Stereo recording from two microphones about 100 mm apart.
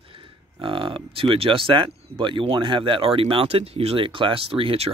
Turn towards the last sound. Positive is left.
turn(degrees=-75)  # may be behind; listen again after turning